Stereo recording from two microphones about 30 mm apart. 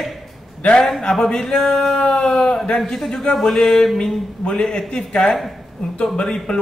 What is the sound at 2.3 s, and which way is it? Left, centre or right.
Speech, centre.